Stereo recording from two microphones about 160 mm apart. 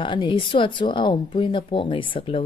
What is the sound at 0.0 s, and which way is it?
Speech, 30° left (ahead or behind).